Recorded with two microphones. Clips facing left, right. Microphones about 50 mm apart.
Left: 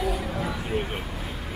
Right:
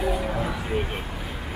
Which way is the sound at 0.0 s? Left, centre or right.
Centre.